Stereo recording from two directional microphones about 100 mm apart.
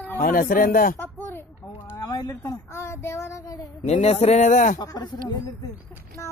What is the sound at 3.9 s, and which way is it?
Speech, 90° left.